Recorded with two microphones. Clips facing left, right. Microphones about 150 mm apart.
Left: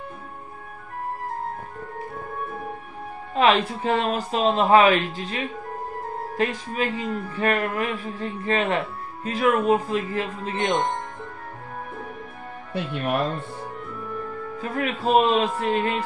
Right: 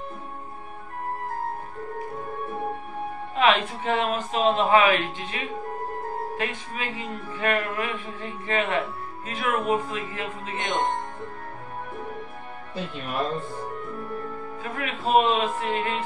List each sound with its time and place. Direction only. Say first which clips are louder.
3.3 s speech: left 2 dB; 35° left (ahead or behind)
12.7 s speech: left 6 dB; 70° left (ahead or behind)
14.8 s speech: left 2 dB; 35° left (ahead or behind)